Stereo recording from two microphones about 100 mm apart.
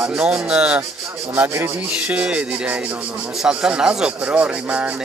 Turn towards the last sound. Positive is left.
turn(degrees=-10)  # may be behind; listen again after turning